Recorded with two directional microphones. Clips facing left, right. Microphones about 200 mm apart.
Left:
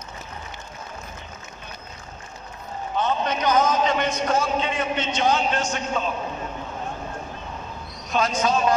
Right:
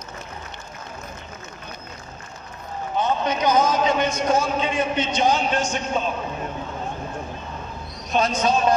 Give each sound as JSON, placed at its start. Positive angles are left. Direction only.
{"t": 3.0, "sound": "a man's voice", "side_deg": -10}
{"t": 8.1, "sound": "speech", "side_deg": -20}